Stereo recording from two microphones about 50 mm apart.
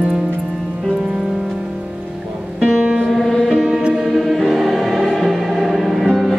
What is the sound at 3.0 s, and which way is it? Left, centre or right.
Music, centre.